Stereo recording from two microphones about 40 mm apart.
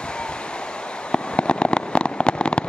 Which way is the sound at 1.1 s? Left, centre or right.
Left.